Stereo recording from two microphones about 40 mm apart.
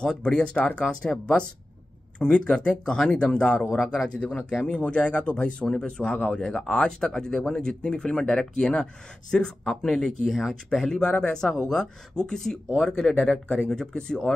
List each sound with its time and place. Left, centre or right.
0.0 s speech: centre
2.1 s speech: left